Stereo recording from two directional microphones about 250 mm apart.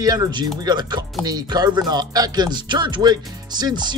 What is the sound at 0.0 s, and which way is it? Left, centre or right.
Speech, centre.